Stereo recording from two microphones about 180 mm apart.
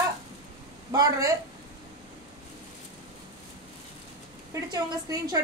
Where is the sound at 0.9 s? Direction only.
20° right (ahead or behind).